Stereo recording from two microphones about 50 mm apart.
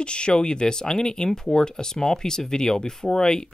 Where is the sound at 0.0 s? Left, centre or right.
Centre.